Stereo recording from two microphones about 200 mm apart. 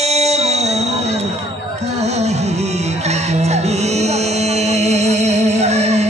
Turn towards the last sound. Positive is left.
turn(degrees=-35)  # may be behind; listen again after turning